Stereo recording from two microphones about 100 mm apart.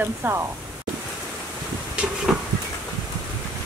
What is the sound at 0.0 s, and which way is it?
Speech, 20° right (ahead or behind).